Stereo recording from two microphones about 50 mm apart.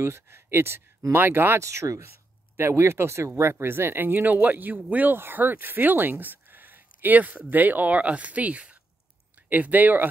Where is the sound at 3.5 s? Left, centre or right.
Right.